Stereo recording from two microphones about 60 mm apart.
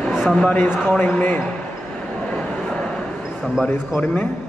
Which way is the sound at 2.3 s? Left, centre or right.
Centre.